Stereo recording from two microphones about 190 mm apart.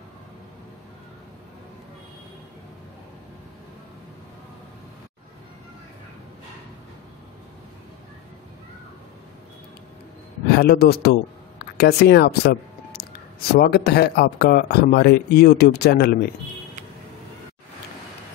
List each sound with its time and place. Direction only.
10.5 s speech: 55° left (ahead or behind)
13.5 s speech: 55° left (ahead or behind)